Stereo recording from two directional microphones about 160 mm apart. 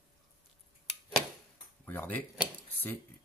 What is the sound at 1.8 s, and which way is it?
Speech, 10° left (ahead or behind).